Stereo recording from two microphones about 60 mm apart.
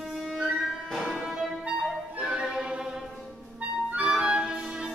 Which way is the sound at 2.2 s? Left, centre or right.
Centre.